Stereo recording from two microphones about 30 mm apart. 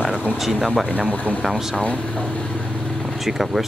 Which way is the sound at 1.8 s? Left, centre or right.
Left.